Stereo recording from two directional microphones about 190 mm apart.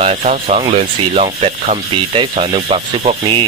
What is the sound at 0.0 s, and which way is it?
Speech, 35° right (ahead or behind).